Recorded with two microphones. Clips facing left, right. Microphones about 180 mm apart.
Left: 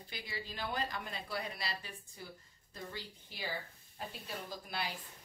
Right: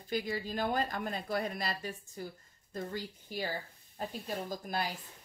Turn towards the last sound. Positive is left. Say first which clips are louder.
# right 5 dB
turn(degrees=-45)  # may be behind; listen again after turning